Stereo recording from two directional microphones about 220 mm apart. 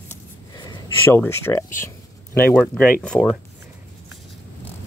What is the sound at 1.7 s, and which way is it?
Speech, 10° left (ahead or behind).